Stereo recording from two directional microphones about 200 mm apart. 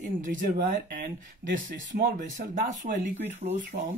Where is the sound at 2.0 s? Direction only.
45° right (ahead or behind).